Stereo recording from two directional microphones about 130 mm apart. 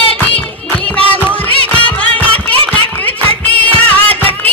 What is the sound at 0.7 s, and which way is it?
Music, 10° left (ahead or behind).